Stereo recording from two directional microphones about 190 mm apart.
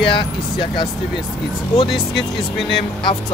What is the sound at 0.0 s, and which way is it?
Speech, 25° left (ahead or behind).